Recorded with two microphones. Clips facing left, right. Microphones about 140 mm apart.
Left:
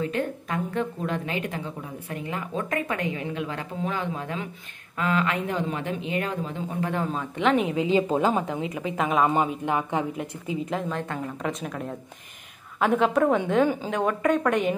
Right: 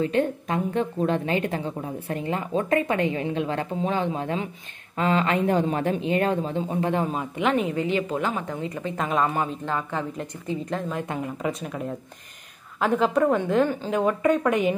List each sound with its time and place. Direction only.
0.0 s a woman's voice: 25° right (ahead or behind)
7.1 s a woman's voice: 10° right (ahead or behind)
7.9 s a woman's voice: 25° left (ahead or behind)
8.5 s a woman's voice: 5° left (ahead or behind)
9.3 s a woman's voice: 15° left (ahead or behind); by 14.8 s 5° right (ahead or behind)